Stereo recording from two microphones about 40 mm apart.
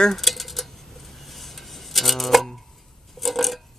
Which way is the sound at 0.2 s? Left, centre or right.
Centre.